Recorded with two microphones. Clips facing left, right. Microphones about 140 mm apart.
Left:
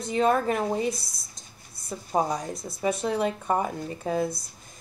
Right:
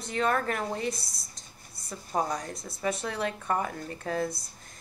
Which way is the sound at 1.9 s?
25° left (ahead or behind).